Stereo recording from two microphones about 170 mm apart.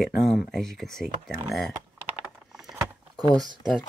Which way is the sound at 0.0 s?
Centre (ahead or behind).